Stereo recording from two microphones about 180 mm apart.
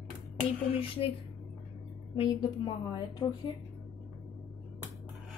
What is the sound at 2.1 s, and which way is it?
A woman's voice, 30° left (ahead or behind).